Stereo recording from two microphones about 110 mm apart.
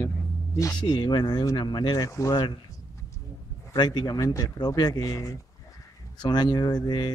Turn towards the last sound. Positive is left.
turn(degrees=40)  # may be behind; listen again after turning